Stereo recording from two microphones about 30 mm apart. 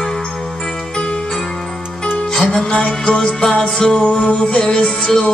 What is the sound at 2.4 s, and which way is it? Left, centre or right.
Music, centre.